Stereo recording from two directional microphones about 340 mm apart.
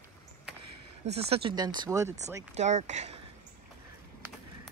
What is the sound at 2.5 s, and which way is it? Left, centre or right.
Speech, centre.